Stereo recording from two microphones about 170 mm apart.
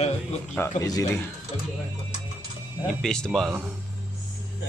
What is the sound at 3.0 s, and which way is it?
Speech, 5° left (ahead or behind).